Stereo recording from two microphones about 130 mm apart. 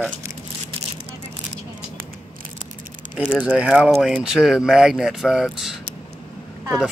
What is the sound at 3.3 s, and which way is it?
Speech, 10° right (ahead or behind).